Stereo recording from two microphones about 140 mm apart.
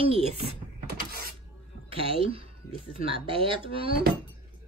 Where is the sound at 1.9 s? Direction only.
40° right (ahead or behind).